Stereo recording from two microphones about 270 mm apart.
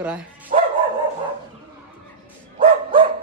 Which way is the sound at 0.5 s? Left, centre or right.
Right.